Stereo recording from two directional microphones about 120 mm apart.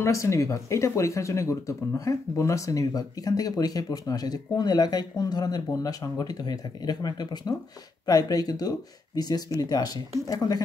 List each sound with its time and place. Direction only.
0.0 s speech: 25° left (ahead or behind)